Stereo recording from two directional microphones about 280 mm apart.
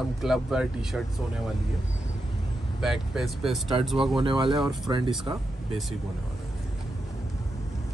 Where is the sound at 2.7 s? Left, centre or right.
Centre.